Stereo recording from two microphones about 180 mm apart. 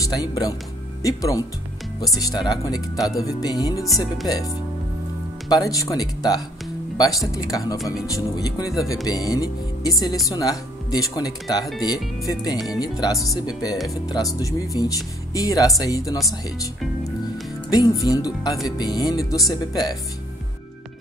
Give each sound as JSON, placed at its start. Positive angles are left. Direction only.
{"t": 0.0, "sound": "music", "side_deg": 20}
{"t": 5.5, "sound": "music", "side_deg": 20}
{"t": 7.7, "sound": "speech", "side_deg": 0}
{"t": 8.1, "sound": "music", "side_deg": 20}
{"t": 10.3, "sound": "speech", "side_deg": 20}
{"t": 12.3, "sound": "music", "side_deg": 20}
{"t": 16.4, "sound": "speech", "side_deg": 20}
{"t": 18.0, "sound": "music", "side_deg": 20}